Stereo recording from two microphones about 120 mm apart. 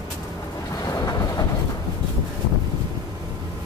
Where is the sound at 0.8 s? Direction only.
30° left (ahead or behind).